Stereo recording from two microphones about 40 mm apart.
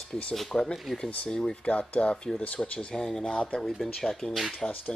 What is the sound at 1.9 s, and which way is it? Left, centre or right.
Speech, left.